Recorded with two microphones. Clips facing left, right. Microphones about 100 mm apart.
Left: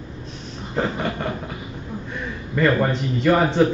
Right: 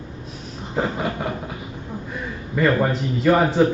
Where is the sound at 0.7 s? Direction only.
5° right (ahead or behind).